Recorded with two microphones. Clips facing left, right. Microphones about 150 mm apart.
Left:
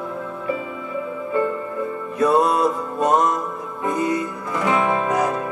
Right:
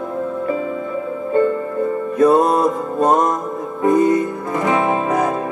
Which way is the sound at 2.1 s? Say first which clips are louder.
Right 4 dB; 50° right (ahead or behind).